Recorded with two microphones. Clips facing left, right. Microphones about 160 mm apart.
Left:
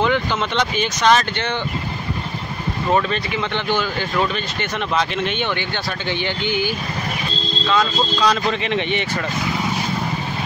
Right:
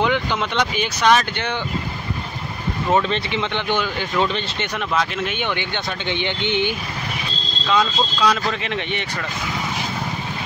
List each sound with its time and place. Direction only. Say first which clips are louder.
0.0 s speech: left 1 dB; 15° right (ahead or behind)
2.9 s speech: even; 20° right (ahead or behind)
4.9 s speech: left 2 dB; 5° right (ahead or behind)
6.0 s speech: even; 20° right (ahead or behind)
7.6 s speech: even; 5° right (ahead or behind)